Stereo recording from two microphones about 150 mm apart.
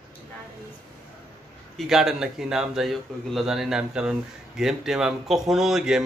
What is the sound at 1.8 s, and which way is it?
A man's voice, centre (ahead or behind).